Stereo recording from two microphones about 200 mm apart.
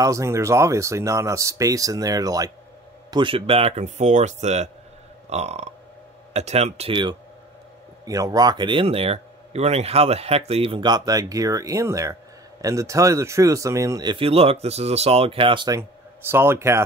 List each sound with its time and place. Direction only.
0.0 s a man's voice: 15° right (ahead or behind)
16.2 s speech: 10° right (ahead or behind)